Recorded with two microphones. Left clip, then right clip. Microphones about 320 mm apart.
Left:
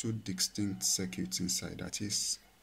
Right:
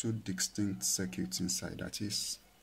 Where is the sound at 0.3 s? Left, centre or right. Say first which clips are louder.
Left 2 dB; centre.